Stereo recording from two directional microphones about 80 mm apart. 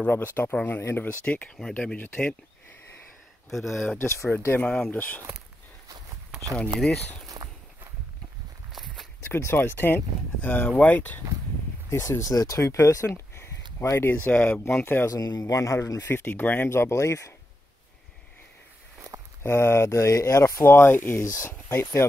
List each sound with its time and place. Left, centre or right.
0.0 s speech: left
3.4 s speech: centre
4.0 s speech: left
4.6 s speech: centre
6.5 s speech: centre
7.4 s walk: right
9.3 s speech: left
12.2 s speech: left; by 14.6 s centre
15.0 s speech: left
16.0 s speech: left
18.9 s a sound: right
19.4 s speech: left